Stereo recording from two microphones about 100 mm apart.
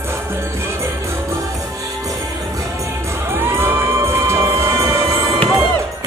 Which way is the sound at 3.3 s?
25° right (ahead or behind).